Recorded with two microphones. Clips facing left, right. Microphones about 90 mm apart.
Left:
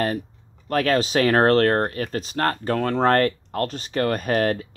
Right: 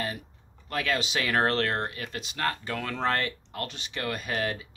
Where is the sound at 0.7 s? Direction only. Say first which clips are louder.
Left 9 dB; 45° left (ahead or behind).